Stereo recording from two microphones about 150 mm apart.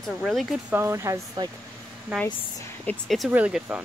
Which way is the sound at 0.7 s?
15° right (ahead or behind).